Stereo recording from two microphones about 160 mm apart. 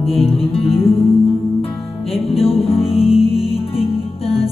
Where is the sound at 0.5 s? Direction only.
35° left (ahead or behind).